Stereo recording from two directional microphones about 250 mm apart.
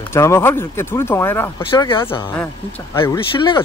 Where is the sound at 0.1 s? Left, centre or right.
Centre.